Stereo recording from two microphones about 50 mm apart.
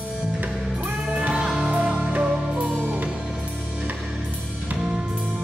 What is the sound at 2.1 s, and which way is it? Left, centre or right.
Music, right.